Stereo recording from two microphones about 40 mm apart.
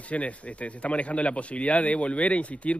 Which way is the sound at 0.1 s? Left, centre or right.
Left.